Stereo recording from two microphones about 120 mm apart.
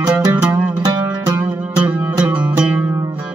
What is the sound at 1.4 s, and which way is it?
Music, 10° right (ahead or behind).